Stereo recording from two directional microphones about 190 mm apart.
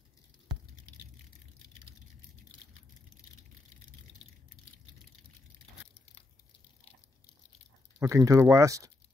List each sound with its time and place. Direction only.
8.0 s speech: 15° right (ahead or behind)